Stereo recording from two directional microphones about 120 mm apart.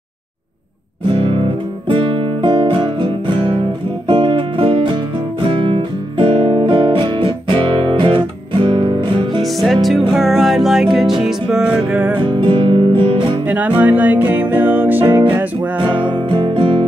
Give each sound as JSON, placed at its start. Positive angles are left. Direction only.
{"t": 1.1, "sound": "music", "side_deg": -50}
{"t": 5.6, "sound": "guitar", "side_deg": -45}
{"t": 9.4, "sound": "music", "side_deg": 0}
{"t": 12.2, "sound": "music", "side_deg": -40}
{"t": 13.5, "sound": "music", "side_deg": -10}
{"t": 15.8, "sound": "music", "side_deg": -40}